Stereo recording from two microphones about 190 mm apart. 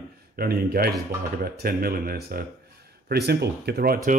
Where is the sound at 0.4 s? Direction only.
50° right (ahead or behind).